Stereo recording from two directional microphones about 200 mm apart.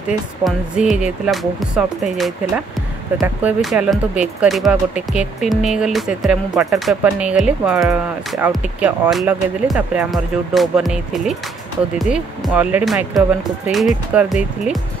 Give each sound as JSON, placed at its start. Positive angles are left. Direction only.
{"t": 0.4, "sound": "speech", "side_deg": -5}